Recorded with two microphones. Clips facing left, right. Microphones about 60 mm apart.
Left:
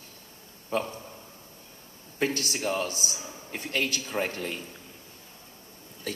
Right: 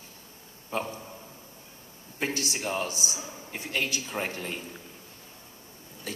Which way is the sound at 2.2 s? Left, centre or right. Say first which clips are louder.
Left 3 dB; left.